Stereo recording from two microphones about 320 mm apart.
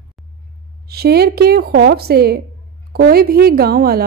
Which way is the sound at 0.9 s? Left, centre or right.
Right.